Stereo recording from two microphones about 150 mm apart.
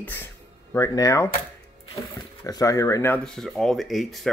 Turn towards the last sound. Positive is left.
turn(degrees=0)  # may be behind; listen again after turning